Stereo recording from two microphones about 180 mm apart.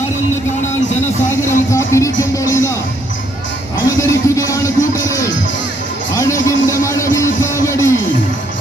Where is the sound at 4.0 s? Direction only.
15° left (ahead or behind).